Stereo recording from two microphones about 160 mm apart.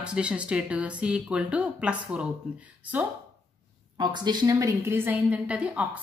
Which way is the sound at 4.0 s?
30° right (ahead or behind).